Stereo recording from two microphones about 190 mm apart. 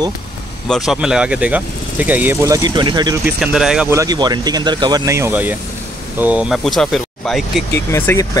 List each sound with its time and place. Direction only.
0.7 s speech: centre (ahead or behind); by 3.2 s 25° right (ahead or behind)
3.3 s speech: 5° right (ahead or behind)
3.9 s speech: 20° right (ahead or behind); by 7.6 s centre (ahead or behind)
7.7 s speech: 15° left (ahead or behind)